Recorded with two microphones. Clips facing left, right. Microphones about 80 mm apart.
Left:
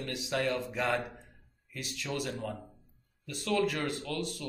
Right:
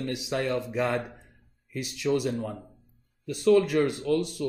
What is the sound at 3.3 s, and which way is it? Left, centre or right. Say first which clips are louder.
Speech: right 9 dB; right.